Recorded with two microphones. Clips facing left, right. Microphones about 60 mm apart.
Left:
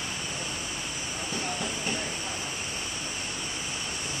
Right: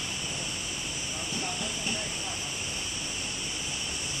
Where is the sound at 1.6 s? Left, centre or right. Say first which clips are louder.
Left 2 dB; left.